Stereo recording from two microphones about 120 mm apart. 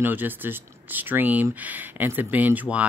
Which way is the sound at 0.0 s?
15° right (ahead or behind).